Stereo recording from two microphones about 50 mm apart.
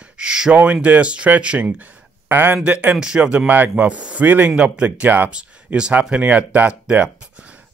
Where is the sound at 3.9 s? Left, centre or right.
Right.